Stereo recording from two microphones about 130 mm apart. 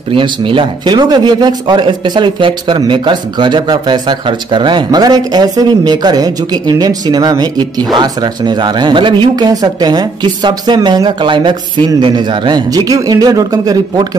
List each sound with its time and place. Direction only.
0.1 s speech: 40° right (ahead or behind)